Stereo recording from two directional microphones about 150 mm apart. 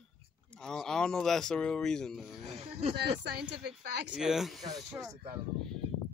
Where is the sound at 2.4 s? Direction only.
45° right (ahead or behind).